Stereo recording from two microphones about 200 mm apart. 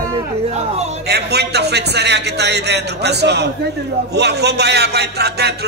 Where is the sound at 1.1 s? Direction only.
55° right (ahead or behind).